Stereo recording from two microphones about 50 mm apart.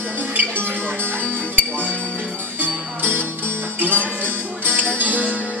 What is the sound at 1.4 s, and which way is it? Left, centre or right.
Music, left.